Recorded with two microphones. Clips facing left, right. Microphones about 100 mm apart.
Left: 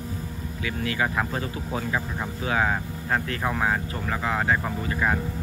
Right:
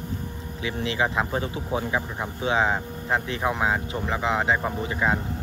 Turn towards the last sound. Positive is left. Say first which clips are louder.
# right 1 dB
turn(degrees=-20)  # may be behind; listen again after turning